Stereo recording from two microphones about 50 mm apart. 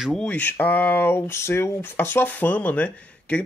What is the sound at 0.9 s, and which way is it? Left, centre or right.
Speech, left.